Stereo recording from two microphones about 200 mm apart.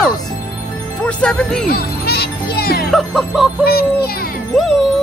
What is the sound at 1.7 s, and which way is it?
Music, 50° left (ahead or behind).